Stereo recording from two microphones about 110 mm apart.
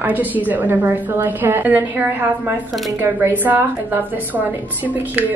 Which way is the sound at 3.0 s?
20° right (ahead or behind).